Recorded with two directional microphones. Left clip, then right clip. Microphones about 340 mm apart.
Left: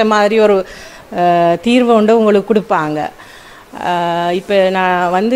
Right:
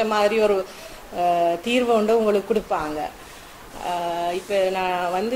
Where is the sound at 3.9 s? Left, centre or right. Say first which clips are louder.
Left 10 dB; left.